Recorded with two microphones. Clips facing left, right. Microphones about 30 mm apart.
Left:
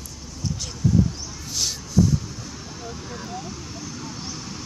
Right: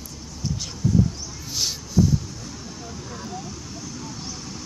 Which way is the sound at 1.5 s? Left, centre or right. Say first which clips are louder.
Even; centre.